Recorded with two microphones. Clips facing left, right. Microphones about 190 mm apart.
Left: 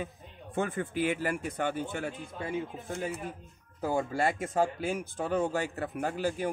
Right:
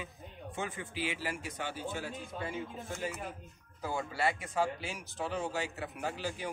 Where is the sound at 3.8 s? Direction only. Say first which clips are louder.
Left 5 dB; 50° left (ahead or behind).